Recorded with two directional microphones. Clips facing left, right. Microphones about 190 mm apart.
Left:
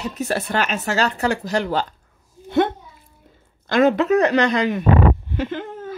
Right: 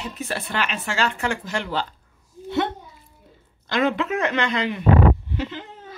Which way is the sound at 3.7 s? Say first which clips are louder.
Left 6 dB; 45° left (ahead or behind).